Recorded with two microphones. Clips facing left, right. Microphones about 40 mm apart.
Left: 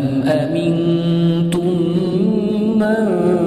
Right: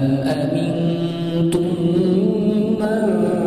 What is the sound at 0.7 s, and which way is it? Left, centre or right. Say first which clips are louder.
Mantra: left 5 dB; left.